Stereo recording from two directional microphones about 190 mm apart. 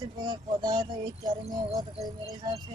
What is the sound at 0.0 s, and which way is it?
Speech, 20° right (ahead or behind).